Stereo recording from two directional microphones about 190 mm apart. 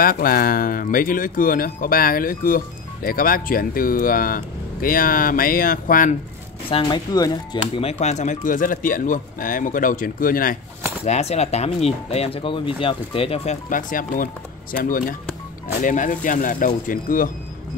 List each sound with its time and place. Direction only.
0.0 s speech: 50° left (ahead or behind)
6.7 s speech: 25° left (ahead or behind); by 10.6 s 50° left (ahead or behind)
11.1 s speech: 35° left (ahead or behind)
13.7 s speech: 45° left (ahead or behind)